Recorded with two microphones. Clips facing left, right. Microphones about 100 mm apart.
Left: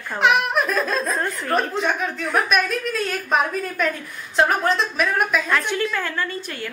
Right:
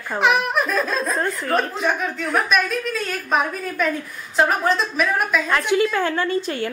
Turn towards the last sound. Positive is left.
turn(degrees=-30)  # may be behind; listen again after turning